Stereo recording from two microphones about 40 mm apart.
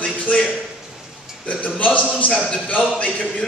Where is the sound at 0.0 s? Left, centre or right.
Left.